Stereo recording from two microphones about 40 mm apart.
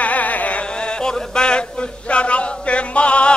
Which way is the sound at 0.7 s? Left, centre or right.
Left.